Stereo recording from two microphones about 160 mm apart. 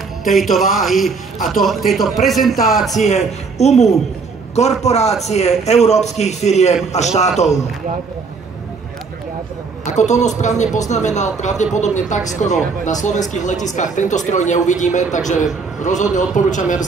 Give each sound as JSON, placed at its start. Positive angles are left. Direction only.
{"t": 0.3, "sound": "a man's voice", "side_deg": 0}
{"t": 2.9, "sound": "speech", "side_deg": 45}
{"t": 9.9, "sound": "speech", "side_deg": 45}